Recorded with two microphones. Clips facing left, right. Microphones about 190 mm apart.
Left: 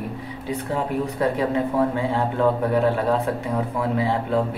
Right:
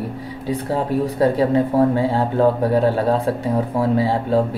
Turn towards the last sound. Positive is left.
turn(degrees=-35)  # may be behind; listen again after turning